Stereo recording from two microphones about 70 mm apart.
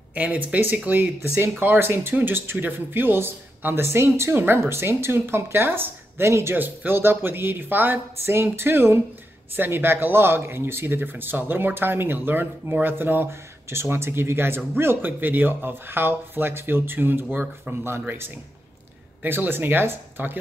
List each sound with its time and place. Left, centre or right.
0.1 s speech: right
6.5 s speech: right